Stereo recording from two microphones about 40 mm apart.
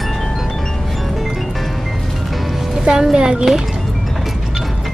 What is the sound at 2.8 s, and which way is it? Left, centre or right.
Music, centre.